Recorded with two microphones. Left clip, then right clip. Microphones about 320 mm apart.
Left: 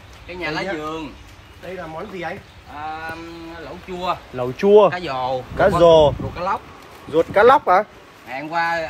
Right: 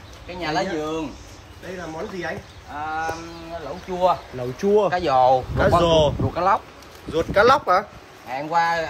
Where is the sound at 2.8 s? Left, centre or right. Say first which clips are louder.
Right 3 dB; centre.